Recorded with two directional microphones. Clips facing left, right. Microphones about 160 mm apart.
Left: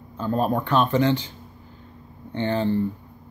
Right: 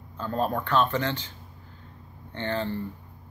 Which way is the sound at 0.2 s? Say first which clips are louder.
Left 5 dB; 15° left (ahead or behind).